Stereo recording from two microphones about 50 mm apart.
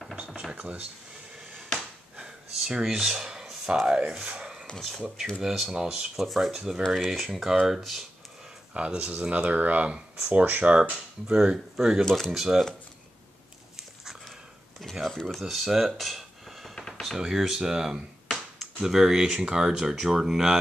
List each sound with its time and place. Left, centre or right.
0.3 s a sound: centre
1.8 s a sound: centre
3.8 s speech: centre
4.3 s a sound: centre
4.7 s speech: centre
5.4 s speech: centre
8.7 s speech: right
11.2 s speech: centre
12.0 s speech: centre
12.3 s speech: centre
14.8 s speech: centre